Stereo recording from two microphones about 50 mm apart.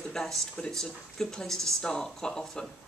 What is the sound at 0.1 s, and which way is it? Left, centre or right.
Speech, centre.